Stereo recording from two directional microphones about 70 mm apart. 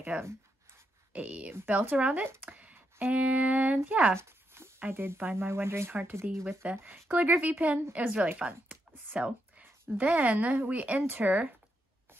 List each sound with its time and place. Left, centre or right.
0.1 s a woman's voice: centre
4.1 s a sound: right
4.7 s speech: right
6.6 s a woman's voice: centre
8.4 s a sound: right
10.0 s a woman's voice: right